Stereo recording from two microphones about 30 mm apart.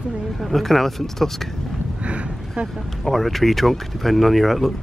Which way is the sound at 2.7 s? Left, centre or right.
Centre.